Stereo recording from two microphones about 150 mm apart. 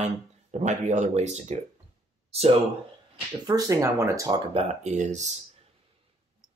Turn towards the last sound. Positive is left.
turn(degrees=-50)  # may be behind; listen again after turning